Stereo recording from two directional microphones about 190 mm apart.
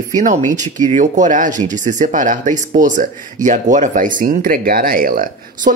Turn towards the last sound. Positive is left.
turn(degrees=-45)  # may be behind; listen again after turning